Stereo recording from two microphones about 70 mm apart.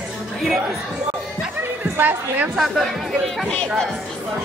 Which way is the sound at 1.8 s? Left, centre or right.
Right.